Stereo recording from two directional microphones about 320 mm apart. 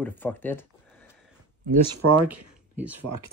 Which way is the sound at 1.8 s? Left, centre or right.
Right.